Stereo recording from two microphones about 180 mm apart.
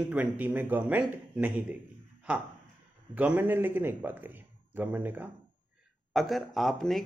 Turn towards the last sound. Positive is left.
turn(degrees=0)  # may be behind; listen again after turning